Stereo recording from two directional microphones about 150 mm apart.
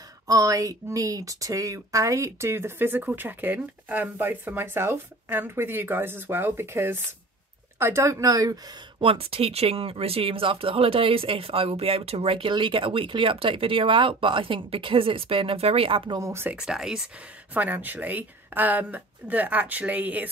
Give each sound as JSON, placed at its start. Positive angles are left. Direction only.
{"t": 0.3, "sound": "a woman's voice", "side_deg": -25}
{"t": 9.0, "sound": "speech", "side_deg": -40}
{"t": 16.2, "sound": "speech", "side_deg": -15}
{"t": 16.5, "sound": "speech", "side_deg": -5}